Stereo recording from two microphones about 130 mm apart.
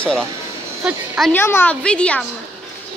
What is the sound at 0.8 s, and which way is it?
Speech, 5° right (ahead or behind).